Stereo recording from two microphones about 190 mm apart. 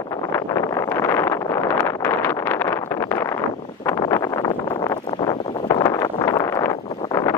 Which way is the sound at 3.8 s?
15° left (ahead or behind).